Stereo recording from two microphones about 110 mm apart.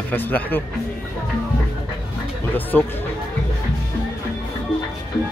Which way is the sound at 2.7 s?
10° left (ahead or behind).